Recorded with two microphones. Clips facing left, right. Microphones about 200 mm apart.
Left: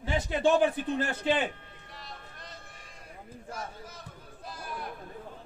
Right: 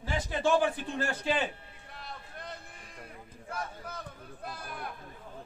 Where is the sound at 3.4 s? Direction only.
60° right (ahead or behind).